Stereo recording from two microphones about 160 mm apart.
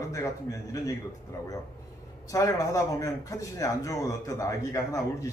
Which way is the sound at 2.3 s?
20° left (ahead or behind).